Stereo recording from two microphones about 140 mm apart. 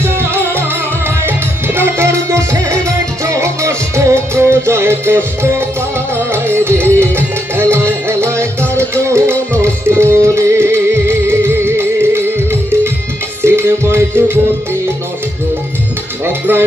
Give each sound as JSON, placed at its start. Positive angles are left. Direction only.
{"t": 0.2, "sound": "music", "side_deg": -15}
{"t": 1.8, "sound": "music", "side_deg": -20}
{"t": 13.4, "sound": "music", "side_deg": -20}
{"t": 16.3, "sound": "music", "side_deg": -15}